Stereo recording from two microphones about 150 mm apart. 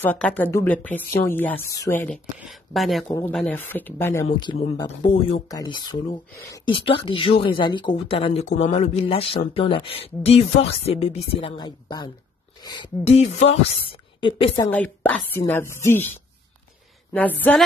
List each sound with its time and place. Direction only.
0.0 s speech: 10° left (ahead or behind)
4.3 s speech: 30° left (ahead or behind)
13.0 s speech: 45° left (ahead or behind)
14.7 s speech: 10° left (ahead or behind)
17.1 s speech: 10° left (ahead or behind)